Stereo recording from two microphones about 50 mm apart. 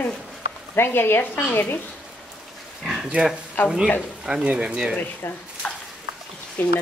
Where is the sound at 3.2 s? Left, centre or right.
Right.